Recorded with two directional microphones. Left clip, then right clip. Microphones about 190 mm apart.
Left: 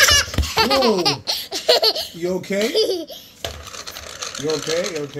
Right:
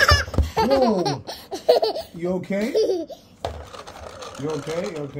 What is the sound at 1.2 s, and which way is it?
Laughter, 20° right (ahead or behind).